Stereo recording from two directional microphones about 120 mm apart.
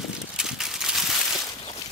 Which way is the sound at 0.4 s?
5° right (ahead or behind).